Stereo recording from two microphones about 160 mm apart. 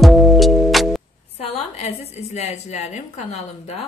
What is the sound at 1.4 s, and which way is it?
A woman's voice, 40° left (ahead or behind).